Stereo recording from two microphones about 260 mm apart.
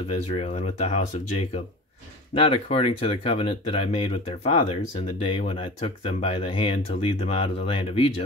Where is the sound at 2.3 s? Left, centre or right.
Left.